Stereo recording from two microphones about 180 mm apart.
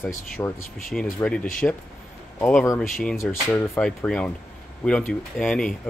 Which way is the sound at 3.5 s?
15° left (ahead or behind).